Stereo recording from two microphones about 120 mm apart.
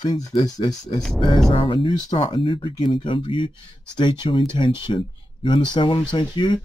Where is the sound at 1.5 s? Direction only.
50° left (ahead or behind).